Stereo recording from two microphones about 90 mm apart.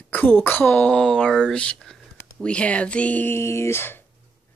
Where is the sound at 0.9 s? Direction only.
5° left (ahead or behind); by 4.0 s 25° left (ahead or behind).